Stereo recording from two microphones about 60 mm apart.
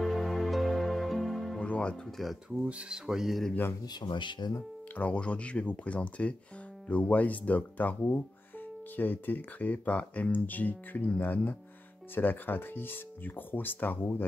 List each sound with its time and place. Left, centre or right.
0.0 s music: centre
1.6 s music: centre
2.0 s speech: centre
2.6 s speech: right
3.1 s speech: centre
4.9 s speech: left